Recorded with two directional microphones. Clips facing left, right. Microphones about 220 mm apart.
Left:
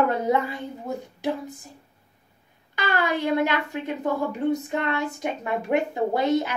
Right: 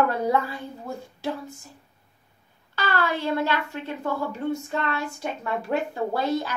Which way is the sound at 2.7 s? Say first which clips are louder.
Left 1 dB; 15° left (ahead or behind).